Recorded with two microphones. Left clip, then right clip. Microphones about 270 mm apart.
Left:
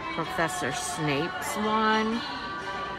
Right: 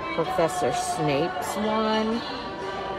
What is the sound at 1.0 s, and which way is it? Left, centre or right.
Speech, left.